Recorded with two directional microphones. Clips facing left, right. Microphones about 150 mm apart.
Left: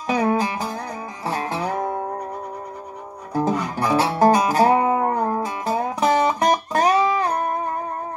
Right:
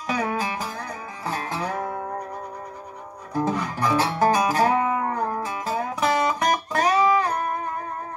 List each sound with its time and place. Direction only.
0.0 s music: 30° left (ahead or behind)
3.4 s music: 30° left (ahead or behind)
5.4 s music: 20° left (ahead or behind)